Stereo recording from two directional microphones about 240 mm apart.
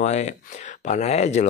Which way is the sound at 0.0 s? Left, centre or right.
Left.